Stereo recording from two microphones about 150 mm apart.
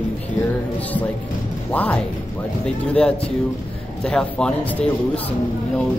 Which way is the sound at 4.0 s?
5° left (ahead or behind).